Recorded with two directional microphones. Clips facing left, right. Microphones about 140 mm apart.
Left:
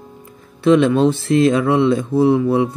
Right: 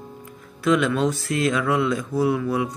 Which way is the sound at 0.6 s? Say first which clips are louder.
Left 7 dB; 25° left (ahead or behind).